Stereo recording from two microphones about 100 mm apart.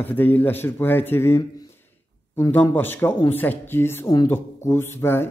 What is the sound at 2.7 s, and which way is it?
Speech, 20° left (ahead or behind).